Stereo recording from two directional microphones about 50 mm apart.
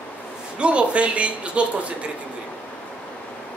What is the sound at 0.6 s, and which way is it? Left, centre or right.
Speech, right.